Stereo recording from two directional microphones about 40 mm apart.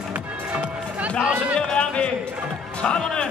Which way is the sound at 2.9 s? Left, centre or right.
Centre.